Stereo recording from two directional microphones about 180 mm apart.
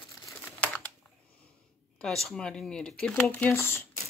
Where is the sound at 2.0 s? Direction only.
5° left (ahead or behind).